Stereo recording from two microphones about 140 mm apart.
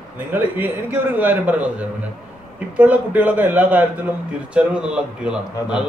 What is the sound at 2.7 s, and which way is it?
A man's voice, 10° right (ahead or behind).